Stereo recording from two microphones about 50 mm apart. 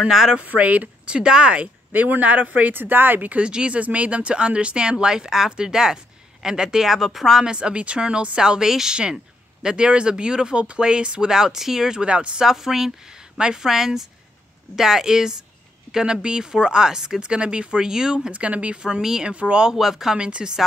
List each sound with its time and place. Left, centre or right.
0.0 s speech: centre
0.4 s speech: right
1.9 s speech: right
2.7 s speech: right
3.4 s speech: right; by 7.4 s centre
7.4 s speech: centre
12.0 s speech: right
12.4 s speech: centre
18.3 s speech: right
19.3 s speech: right
19.7 s speech: centre
20.2 s speech: centre